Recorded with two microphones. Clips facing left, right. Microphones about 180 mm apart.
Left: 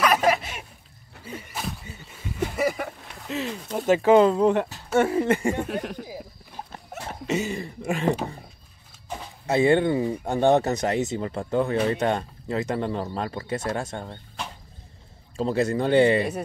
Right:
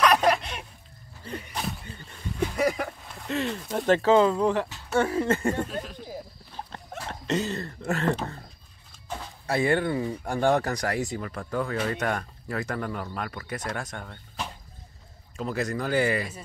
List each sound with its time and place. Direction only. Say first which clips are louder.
0.0 s a sound: even; 5° left (ahead or behind); by 4.6 s 20° left (ahead or behind)
4.9 s speech: left 3 dB; 20° left (ahead or behind)
5.7 s speech: left 5 dB; 65° left (ahead or behind)
6.0 s a sound: even; 10° left (ahead or behind)
9.1 s speech: left 4 dB; 20° left (ahead or behind)
15.3 s speech: left 6 dB; 30° left (ahead or behind)